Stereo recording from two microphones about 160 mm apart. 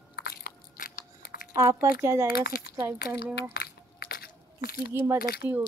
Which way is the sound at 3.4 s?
75° left (ahead or behind).